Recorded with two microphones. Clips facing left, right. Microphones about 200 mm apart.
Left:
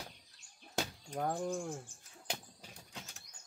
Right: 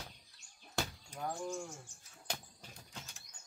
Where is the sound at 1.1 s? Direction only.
55° left (ahead or behind).